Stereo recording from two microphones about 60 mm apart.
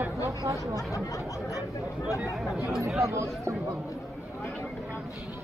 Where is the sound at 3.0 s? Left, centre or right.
Right.